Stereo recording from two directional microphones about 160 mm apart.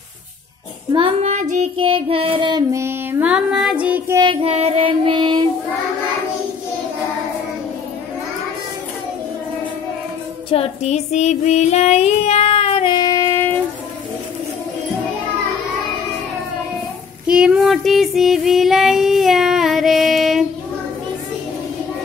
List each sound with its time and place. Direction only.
0.9 s child singing: 30° right (ahead or behind)
1.3 s child singing: 50° right (ahead or behind)
1.8 s child singing: 35° right (ahead or behind)
2.7 s child singing: 15° right (ahead or behind)
4.2 s child singing: 35° right (ahead or behind)
10.5 s child singing: 40° left (ahead or behind); by 13.6 s 15° left (ahead or behind)
17.3 s female singing: 5° right (ahead or behind)